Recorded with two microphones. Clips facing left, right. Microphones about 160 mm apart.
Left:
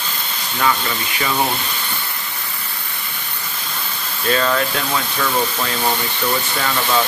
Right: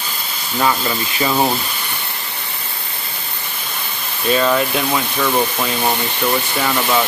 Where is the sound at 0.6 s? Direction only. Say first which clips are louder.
Right 2 dB; 25° right (ahead or behind).